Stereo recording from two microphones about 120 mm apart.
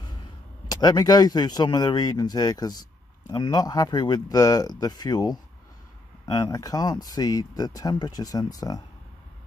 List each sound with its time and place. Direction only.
0.7 s speech: 35° left (ahead or behind)